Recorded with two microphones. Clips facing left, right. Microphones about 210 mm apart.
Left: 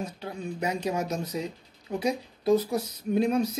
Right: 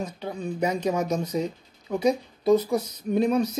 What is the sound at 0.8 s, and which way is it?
Speech, 45° right (ahead or behind).